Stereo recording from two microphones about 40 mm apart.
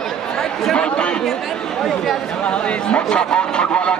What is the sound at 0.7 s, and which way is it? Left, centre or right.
Speech, left.